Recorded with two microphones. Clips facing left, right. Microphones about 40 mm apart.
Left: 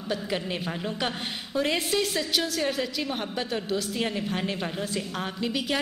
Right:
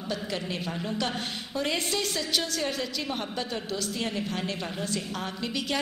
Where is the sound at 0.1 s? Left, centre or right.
Centre.